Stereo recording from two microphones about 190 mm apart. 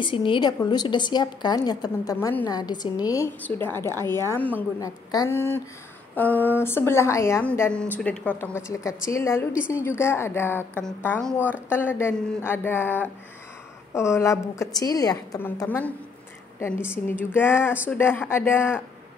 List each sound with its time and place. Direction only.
0.0 s a woman's voice: 25° left (ahead or behind)